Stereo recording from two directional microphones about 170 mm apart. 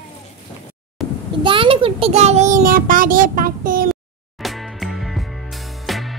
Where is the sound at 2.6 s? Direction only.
55° right (ahead or behind).